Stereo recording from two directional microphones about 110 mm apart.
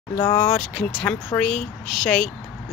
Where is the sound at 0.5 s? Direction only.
5° left (ahead or behind).